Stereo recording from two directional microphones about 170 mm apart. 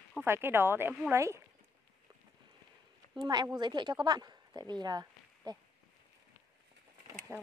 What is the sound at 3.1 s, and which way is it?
A woman's voice, 25° right (ahead or behind).